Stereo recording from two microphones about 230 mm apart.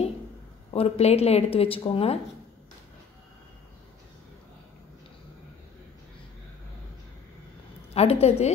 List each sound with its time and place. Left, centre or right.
0.7 s a woman's voice: left
7.9 s a woman's voice: left